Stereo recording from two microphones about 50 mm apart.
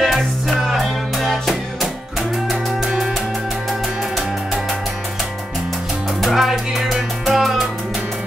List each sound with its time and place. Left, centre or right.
0.0 s music: centre
6.2 s music: centre